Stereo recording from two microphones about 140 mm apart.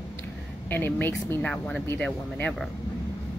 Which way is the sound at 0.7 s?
15° left (ahead or behind).